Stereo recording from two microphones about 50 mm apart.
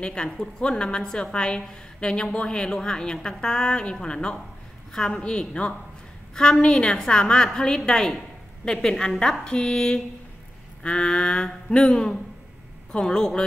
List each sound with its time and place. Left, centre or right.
0.0 s a woman's voice: centre